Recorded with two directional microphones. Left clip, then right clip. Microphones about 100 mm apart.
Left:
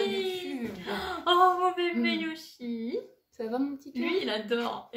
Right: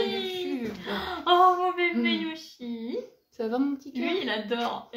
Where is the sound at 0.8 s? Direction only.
35° left (ahead or behind).